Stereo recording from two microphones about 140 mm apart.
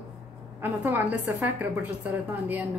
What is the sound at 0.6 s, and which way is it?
A woman's voice, 15° right (ahead or behind).